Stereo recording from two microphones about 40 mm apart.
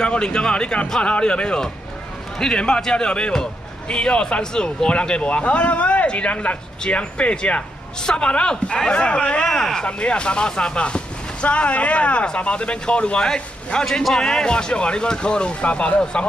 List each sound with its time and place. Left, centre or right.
0.0 s speech: left
8.0 s a woman's voice: centre
8.3 s speech: left
9.8 s speech: left